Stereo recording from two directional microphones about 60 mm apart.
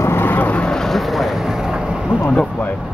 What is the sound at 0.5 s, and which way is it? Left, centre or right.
Speech, centre.